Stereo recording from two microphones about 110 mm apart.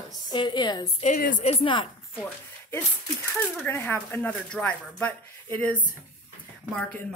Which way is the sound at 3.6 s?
20° left (ahead or behind).